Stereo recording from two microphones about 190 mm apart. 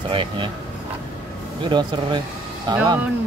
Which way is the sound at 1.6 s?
25° right (ahead or behind).